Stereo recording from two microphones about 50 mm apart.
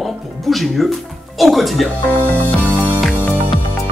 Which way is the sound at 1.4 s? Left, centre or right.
Centre.